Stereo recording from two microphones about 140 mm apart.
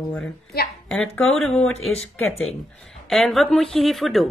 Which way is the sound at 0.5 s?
90° left.